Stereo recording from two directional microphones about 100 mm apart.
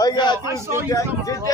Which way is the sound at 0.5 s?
35° left (ahead or behind).